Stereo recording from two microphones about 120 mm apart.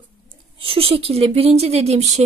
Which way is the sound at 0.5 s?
50° right (ahead or behind).